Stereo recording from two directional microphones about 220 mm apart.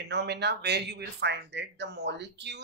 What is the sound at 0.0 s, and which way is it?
Speech, 50° right (ahead or behind).